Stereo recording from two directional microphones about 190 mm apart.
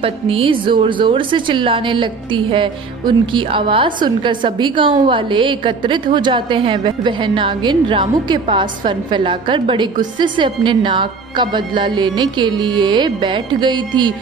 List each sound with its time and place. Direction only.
0.0 s a woman's voice: 30° right (ahead or behind)